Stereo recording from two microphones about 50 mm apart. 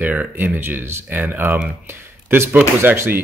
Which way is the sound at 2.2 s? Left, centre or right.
Right.